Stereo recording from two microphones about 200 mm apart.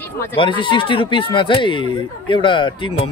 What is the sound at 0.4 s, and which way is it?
Speech, 25° left (ahead or behind).